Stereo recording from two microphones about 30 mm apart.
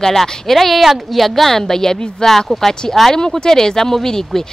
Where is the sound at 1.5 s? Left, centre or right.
Centre.